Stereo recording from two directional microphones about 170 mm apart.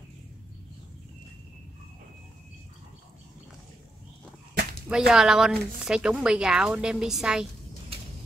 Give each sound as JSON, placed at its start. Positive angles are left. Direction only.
{"t": 4.8, "sound": "a woman's voice", "side_deg": -5}